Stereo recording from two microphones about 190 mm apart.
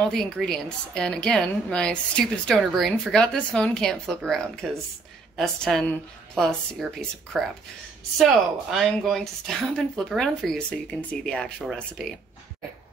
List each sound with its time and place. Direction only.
0.0 s a woman's voice: centre (ahead or behind)